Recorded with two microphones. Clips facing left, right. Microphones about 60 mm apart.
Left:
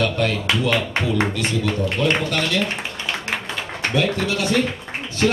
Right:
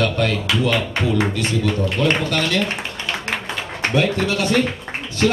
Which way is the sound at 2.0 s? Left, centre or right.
Right.